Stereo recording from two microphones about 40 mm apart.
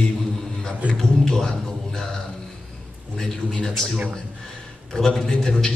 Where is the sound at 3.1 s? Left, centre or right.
Centre.